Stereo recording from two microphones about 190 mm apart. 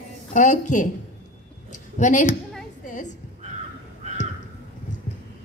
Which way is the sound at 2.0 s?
40° left (ahead or behind).